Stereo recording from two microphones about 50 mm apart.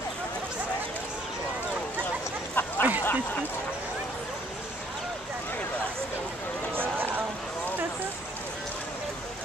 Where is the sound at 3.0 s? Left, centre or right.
Left.